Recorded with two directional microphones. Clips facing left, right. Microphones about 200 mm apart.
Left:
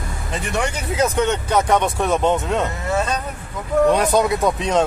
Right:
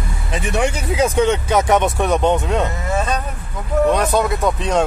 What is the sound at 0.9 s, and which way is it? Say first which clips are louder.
Speech: right 2 dB; 10° right (ahead or behind).